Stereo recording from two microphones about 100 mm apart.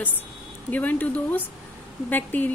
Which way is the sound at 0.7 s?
15° left (ahead or behind).